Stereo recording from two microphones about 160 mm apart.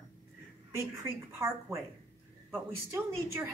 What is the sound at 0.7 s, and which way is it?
A woman's voice, 20° right (ahead or behind).